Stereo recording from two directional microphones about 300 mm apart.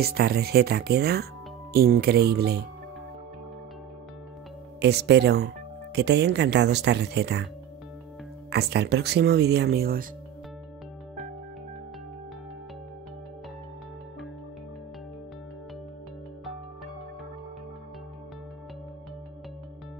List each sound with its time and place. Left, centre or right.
0.0 s speech: right
4.7 s speech: right
8.5 s speech: right